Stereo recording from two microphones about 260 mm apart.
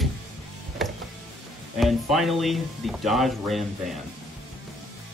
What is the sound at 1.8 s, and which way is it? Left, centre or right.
Speech, centre.